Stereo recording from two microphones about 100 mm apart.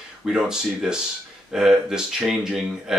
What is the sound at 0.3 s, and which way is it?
Speech, 5° right (ahead or behind).